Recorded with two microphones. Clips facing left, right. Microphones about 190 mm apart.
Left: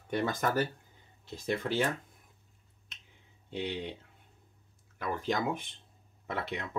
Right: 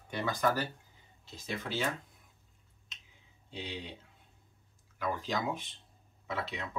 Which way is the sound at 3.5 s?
60° left (ahead or behind).